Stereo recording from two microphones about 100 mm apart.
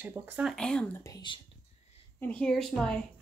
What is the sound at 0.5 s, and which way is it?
Speech, 10° left (ahead or behind).